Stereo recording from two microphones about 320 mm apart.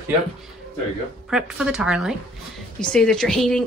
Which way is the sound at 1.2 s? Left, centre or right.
Centre.